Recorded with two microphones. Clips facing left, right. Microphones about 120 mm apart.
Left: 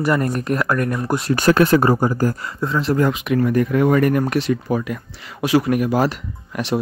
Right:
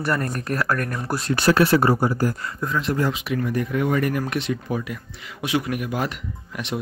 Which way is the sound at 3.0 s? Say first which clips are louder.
Left 6 dB; 50° left (ahead or behind).